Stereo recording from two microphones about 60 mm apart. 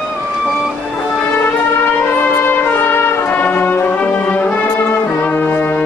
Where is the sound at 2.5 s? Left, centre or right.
Left.